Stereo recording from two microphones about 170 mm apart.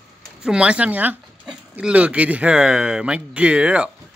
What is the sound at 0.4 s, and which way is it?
Speech, 5° right (ahead or behind).